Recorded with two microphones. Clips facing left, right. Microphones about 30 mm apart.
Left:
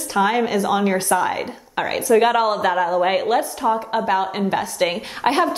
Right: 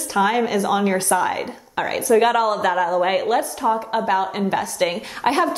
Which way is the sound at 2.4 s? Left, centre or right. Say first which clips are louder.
Even; centre.